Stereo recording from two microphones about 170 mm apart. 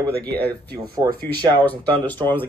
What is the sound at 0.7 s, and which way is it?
Speech, 60° right (ahead or behind).